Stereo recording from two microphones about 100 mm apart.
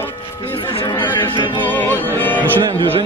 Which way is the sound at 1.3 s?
50° left (ahead or behind).